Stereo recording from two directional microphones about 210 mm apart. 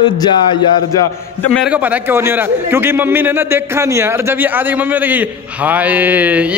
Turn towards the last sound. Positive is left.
turn(degrees=-5)  # may be behind; listen again after turning